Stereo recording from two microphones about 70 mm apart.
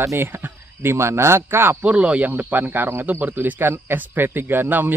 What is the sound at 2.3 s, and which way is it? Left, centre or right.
Speech, right.